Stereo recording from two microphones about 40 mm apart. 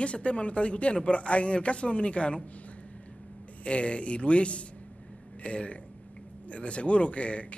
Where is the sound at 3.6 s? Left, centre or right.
Left.